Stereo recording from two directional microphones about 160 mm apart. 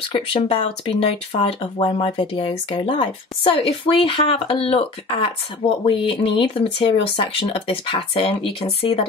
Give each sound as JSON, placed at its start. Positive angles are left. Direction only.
{"t": 0.1, "sound": "speech", "side_deg": 35}